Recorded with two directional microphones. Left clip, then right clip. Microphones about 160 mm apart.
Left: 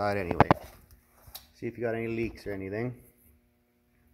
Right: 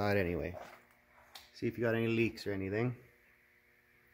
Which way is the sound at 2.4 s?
Centre (ahead or behind).